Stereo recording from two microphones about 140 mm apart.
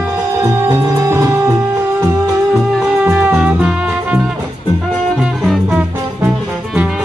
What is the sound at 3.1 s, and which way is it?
Music, 10° right (ahead or behind).